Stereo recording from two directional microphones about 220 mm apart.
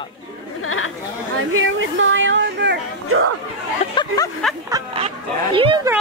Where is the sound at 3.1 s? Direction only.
80° right.